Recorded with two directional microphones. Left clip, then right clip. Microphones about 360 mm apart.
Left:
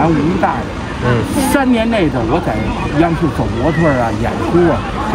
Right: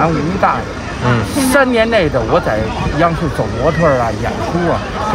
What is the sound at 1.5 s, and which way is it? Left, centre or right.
Speech, centre.